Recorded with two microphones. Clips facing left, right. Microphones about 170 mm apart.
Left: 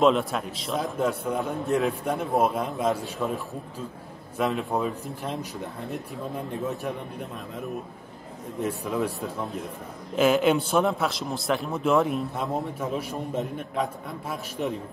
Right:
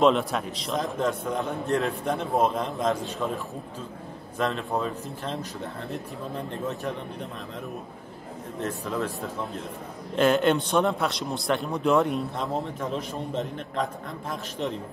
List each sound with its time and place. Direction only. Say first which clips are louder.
0.0 s a man's voice: even; centre (ahead or behind)
4.6 s speech: left 1 dB; 5° left (ahead or behind)
8.5 s speech: left 2 dB; 10° left (ahead or behind)
10.1 s a man's voice: left 1 dB; 5° left (ahead or behind)